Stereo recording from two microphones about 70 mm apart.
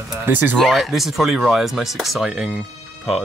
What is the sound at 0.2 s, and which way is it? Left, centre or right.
Speech, right.